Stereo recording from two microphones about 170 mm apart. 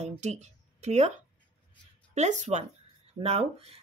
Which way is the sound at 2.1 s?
40° right (ahead or behind).